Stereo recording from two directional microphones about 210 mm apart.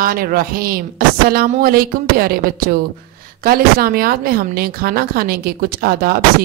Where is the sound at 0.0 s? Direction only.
45° right (ahead or behind).